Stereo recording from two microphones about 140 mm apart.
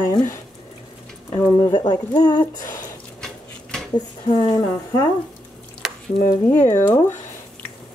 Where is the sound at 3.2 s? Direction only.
5° left (ahead or behind).